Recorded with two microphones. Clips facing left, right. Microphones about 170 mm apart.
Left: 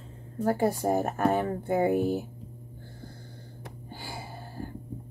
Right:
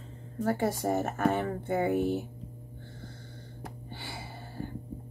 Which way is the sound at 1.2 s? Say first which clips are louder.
Left 2 dB; 40° left (ahead or behind).